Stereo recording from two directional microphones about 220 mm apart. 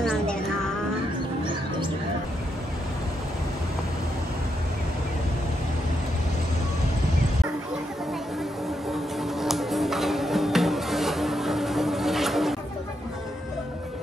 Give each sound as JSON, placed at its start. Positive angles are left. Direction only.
{"t": 0.0, "sound": "music", "side_deg": 0}
{"t": 9.2, "sound": "music", "side_deg": 0}